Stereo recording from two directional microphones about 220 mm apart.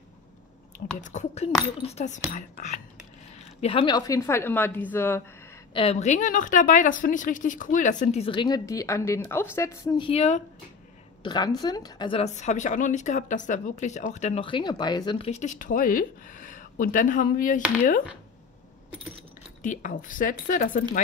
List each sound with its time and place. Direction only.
1.0 s speech: 30° left (ahead or behind)
3.6 s a woman's voice: 20° left (ahead or behind)
5.7 s a woman's voice: 25° left (ahead or behind)
10.0 s speech: 30° left (ahead or behind)
11.2 s speech: 20° left (ahead or behind); by 17.6 s 35° left (ahead or behind)
19.6 s speech: 35° left (ahead or behind)